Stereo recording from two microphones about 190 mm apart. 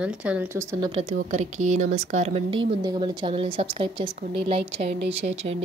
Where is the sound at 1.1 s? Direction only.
40° right (ahead or behind).